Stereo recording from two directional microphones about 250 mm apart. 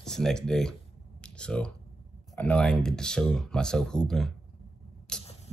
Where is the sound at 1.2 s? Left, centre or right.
Centre.